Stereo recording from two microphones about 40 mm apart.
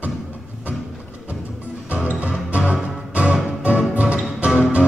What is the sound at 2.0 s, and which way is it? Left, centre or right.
Music, right.